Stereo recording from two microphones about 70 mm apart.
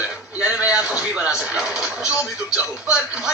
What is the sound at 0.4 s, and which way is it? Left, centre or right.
Speech, centre.